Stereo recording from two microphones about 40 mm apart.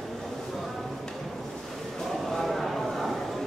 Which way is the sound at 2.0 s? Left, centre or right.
Centre.